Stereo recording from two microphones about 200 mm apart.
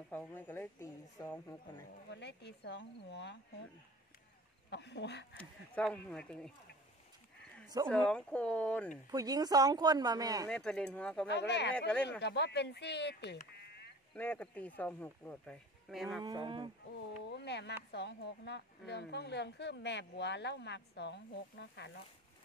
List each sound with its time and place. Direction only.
0.1 s speech: 10° left (ahead or behind)
2.0 s a woman's voice: 60° left (ahead or behind)
4.6 s a woman's voice: 60° left (ahead or behind)
5.4 s speech: 5° left (ahead or behind)
7.8 s speech: 20° right (ahead or behind)
8.1 s speech: 5° left (ahead or behind)
9.1 s speech: 20° right (ahead or behind)
10.5 s speech: 5° left (ahead or behind)
11.2 s a woman's voice: 60° left (ahead or behind)
13.6 s a sound: 55° left (ahead or behind)
14.1 s speech: 5° left (ahead or behind)
16.2 s speech: 20° right (ahead or behind)
16.9 s a woman's voice: 60° left (ahead or behind)